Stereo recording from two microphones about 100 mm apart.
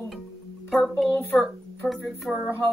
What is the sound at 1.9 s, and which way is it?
Speech, centre (ahead or behind).